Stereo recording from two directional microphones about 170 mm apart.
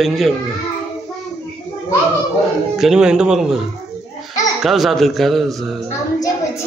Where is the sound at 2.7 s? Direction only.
5° right (ahead or behind).